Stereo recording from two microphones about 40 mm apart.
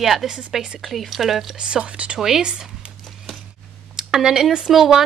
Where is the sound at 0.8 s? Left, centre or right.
Centre.